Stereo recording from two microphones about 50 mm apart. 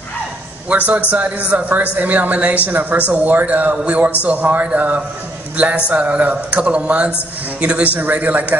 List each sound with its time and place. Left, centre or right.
0.7 s speech: right